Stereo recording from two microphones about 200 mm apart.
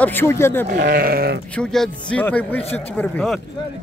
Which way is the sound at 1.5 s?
5° left (ahead or behind).